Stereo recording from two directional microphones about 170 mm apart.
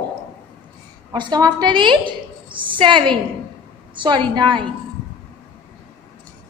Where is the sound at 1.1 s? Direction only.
25° right (ahead or behind).